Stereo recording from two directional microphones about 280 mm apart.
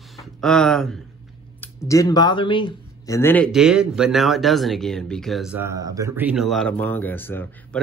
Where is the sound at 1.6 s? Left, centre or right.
Centre.